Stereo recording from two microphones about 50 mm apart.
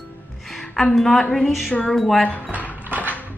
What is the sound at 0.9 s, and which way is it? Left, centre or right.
Speech, centre.